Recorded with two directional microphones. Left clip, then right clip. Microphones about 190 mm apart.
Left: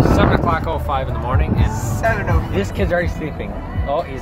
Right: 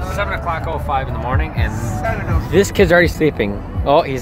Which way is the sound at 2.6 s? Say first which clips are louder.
Right 10 dB; 65° right (ahead or behind).